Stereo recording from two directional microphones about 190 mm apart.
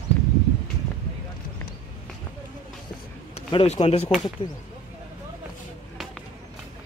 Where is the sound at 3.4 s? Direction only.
30° left (ahead or behind).